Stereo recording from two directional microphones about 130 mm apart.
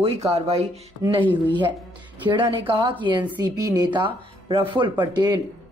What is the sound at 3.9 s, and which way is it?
Speech, 40° right (ahead or behind).